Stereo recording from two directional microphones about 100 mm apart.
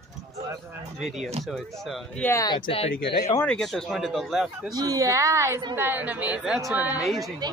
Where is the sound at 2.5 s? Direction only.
65° left (ahead or behind).